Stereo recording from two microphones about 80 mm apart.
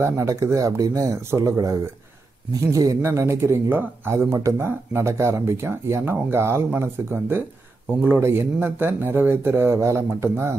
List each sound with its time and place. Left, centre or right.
0.0 s speech: right
3.6 s speech: right
4.1 s speech: right